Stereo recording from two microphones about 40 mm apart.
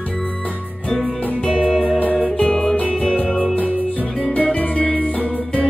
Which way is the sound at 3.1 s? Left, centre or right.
Left.